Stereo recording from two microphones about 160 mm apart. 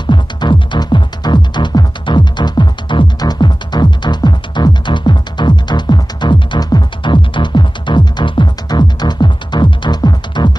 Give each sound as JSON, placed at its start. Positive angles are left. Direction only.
{"t": 0.0, "sound": "music", "side_deg": 30}